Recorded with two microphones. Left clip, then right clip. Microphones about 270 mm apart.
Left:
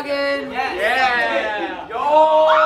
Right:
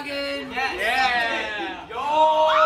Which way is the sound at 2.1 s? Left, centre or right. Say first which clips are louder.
Left 5 dB; centre.